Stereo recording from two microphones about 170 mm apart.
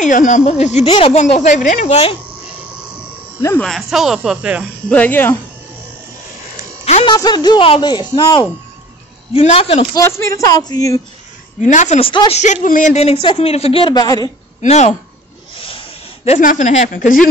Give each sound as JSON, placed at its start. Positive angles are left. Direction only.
{"t": 0.0, "sound": "a woman's voice", "side_deg": 50}
{"t": 3.6, "sound": "speech", "side_deg": 0}
{"t": 4.8, "sound": "speech", "side_deg": 10}
{"t": 6.8, "sound": "music", "side_deg": 40}
{"t": 7.1, "sound": "a woman's voice", "side_deg": 25}
{"t": 9.9, "sound": "speech", "side_deg": 15}
{"t": 11.6, "sound": "a woman's voice", "side_deg": 45}
{"t": 12.1, "sound": "speech", "side_deg": 30}
{"t": 12.6, "sound": "a woman's voice", "side_deg": 50}
{"t": 14.6, "sound": "a woman's voice", "side_deg": 40}
{"t": 16.3, "sound": "a woman's voice", "side_deg": 45}